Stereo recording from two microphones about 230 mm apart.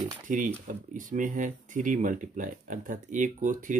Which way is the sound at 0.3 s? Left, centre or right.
Right.